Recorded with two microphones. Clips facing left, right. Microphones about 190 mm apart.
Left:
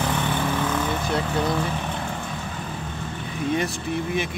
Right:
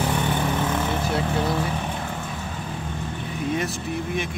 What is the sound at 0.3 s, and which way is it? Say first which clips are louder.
Vehicle: even; 20° right (ahead or behind).